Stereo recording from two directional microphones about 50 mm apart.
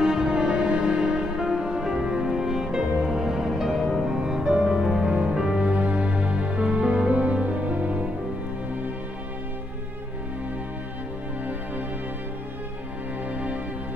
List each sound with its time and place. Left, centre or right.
0.0 s music: centre
5.6 s music: right
13.3 s music: right